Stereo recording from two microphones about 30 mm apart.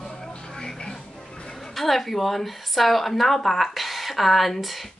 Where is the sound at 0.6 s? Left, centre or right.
Centre.